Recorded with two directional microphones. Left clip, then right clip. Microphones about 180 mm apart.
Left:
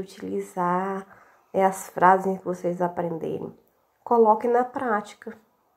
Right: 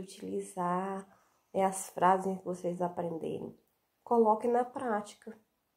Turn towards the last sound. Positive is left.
turn(degrees=20)  # may be behind; listen again after turning